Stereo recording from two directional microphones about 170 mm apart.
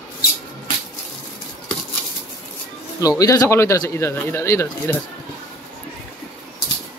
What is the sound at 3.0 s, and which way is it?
Speech, 20° left (ahead or behind).